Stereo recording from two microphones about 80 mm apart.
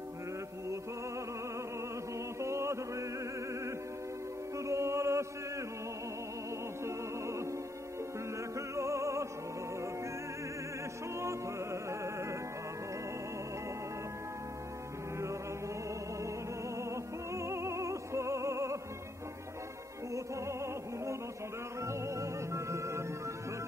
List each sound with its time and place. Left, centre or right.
2.4 s chant: right
4.6 s music: right
8.5 s music: right
11.1 s music: right
16.7 s music: right
20.1 s music: right